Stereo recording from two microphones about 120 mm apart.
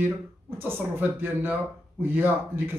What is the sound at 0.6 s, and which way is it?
A man's voice, 15° right (ahead or behind).